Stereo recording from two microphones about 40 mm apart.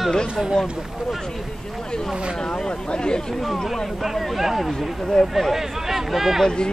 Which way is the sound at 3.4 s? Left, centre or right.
Centre.